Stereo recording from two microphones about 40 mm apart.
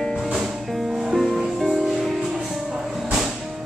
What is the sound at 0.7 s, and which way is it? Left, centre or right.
Music, centre.